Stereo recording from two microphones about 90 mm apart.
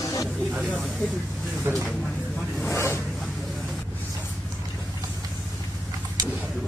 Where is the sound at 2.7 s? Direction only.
30° left (ahead or behind).